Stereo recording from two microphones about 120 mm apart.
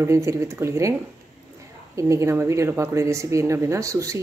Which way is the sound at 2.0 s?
25° right (ahead or behind).